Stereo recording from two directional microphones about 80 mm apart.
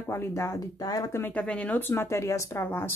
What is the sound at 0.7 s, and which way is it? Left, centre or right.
Speech, left.